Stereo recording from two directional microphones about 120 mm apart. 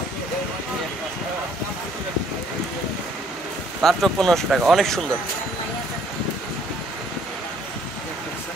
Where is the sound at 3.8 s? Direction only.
Centre (ahead or behind).